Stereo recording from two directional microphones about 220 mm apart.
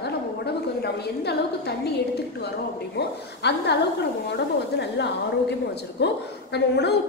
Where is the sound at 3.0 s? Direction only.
50° left (ahead or behind).